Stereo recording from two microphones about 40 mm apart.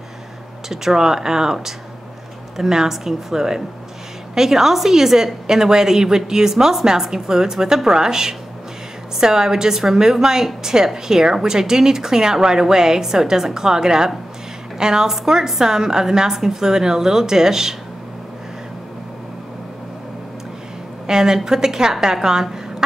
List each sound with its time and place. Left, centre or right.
0.7 s a woman's voice: centre
21.1 s a woman's voice: centre